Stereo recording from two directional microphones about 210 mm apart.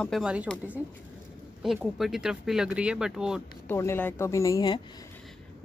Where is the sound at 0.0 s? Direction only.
Centre (ahead or behind).